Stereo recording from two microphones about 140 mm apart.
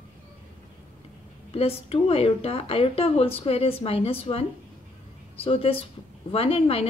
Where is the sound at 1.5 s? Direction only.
45° left (ahead or behind).